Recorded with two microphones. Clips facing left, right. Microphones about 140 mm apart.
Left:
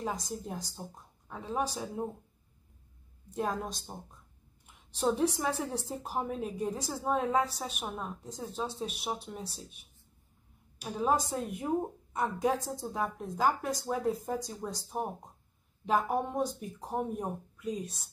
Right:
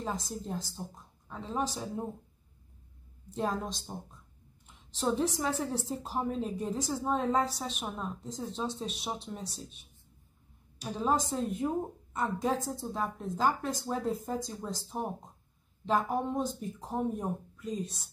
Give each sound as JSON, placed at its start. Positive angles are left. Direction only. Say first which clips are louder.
{"t": 0.0, "sound": "a woman's voice", "louder": "even", "side_deg": 15}
{"t": 1.5, "sound": "speech", "louder": "left 1 dB", "side_deg": 0}
{"t": 3.4, "sound": "a woman's voice", "louder": "right 3 dB", "side_deg": 10}
{"t": 4.9, "sound": "a woman's voice", "louder": "left 1 dB", "side_deg": 10}